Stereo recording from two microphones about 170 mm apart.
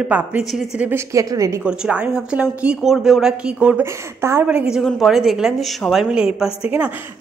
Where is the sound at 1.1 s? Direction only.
20° right (ahead or behind).